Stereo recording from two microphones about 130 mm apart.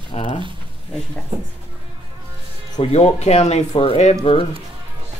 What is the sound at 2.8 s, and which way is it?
Speech, 55° left (ahead or behind).